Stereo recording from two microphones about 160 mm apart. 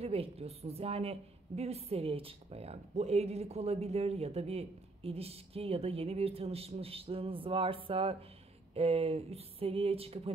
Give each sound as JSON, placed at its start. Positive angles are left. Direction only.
{"t": 0.0, "sound": "a woman's voice", "side_deg": -40}